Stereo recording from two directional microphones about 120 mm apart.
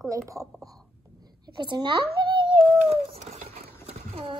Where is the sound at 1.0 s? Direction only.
35° right (ahead or behind); by 4.3 s 55° right (ahead or behind).